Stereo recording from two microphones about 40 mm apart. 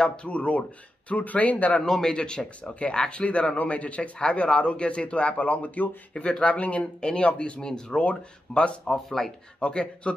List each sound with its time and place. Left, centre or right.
0.0 s a man's voice: centre
0.3 s speech: left
1.8 s a man's voice: centre; by 6.9 s left
7.0 s a man's voice: left
8.8 s speech: centre
9.6 s a man's voice: left